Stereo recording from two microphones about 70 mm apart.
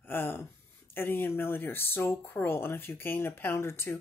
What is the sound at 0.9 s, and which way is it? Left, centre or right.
Speech, left.